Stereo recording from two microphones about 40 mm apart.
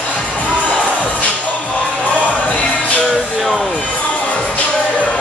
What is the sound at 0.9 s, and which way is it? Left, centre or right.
Music, left.